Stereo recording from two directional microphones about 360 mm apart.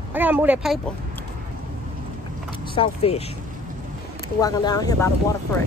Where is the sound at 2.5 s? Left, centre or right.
Centre.